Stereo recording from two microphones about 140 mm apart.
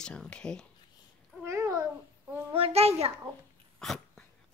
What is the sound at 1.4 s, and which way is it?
Babbling, 20° right (ahead or behind).